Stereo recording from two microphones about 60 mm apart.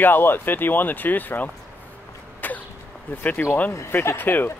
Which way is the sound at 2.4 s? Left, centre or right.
Left.